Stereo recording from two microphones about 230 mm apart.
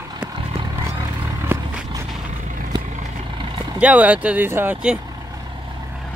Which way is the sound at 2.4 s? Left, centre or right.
Right.